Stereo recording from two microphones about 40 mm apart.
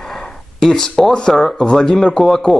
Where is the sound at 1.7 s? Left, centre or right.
Centre.